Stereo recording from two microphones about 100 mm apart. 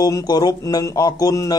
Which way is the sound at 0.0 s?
40° left (ahead or behind).